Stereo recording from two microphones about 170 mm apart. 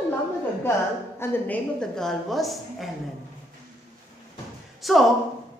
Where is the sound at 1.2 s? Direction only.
5° left (ahead or behind).